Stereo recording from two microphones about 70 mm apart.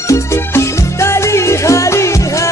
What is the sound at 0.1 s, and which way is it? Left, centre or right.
Music, left.